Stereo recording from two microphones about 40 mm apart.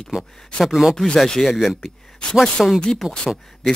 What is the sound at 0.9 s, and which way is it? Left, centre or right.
Speech, centre.